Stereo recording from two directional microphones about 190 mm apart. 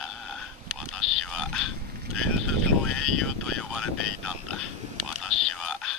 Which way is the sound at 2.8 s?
Centre (ahead or behind).